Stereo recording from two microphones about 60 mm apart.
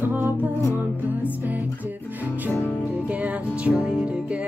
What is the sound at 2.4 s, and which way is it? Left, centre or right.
Music, left.